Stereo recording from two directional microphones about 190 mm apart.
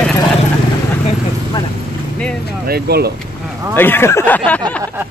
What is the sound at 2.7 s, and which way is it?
Speech, 55° right (ahead or behind).